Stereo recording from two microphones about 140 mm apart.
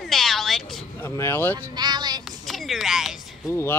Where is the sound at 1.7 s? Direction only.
30° right (ahead or behind).